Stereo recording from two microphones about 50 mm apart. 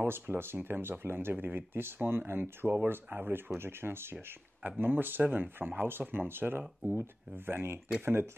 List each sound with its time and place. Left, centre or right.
0.0 s speech: right
6.6 s speech: centre
7.3 s speech: right